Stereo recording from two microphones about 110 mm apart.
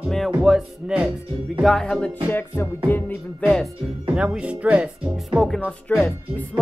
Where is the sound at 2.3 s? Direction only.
20° left (ahead or behind).